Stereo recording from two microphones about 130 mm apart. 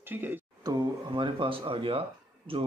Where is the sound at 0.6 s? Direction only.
30° right (ahead or behind).